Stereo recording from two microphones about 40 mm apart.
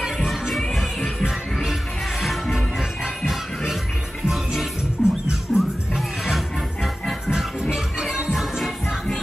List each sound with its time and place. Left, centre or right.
0.2 s music: centre
1.7 s music: centre
2.5 s music: centre
5.0 s music: left
5.5 s music: centre
7.7 s music: centre
8.4 s music: centre